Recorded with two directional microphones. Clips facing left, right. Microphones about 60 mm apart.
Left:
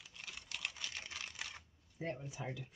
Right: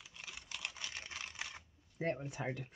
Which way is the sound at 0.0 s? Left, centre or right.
Centre.